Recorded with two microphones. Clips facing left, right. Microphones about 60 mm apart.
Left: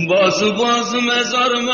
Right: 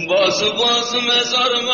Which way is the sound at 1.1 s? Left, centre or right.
Left.